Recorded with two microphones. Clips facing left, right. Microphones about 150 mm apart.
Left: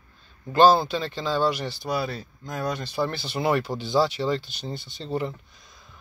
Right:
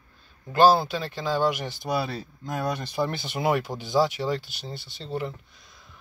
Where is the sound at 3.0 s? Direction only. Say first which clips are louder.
Even; 15° right (ahead or behind).